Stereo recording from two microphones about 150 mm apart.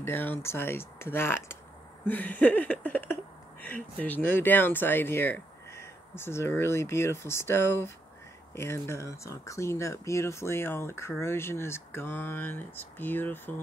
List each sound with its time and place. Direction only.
0.0 s speech: 15° left (ahead or behind)
2.0 s a sound: 10° left (ahead or behind)
3.6 s speech: 10° left (ahead or behind)